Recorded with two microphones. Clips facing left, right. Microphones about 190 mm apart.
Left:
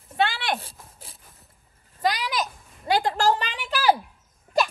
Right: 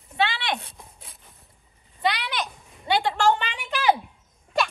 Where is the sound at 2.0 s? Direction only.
40° left (ahead or behind).